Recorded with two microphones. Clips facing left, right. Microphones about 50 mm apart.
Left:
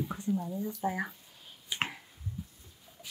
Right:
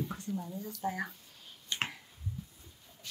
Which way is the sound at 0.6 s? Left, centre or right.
Centre.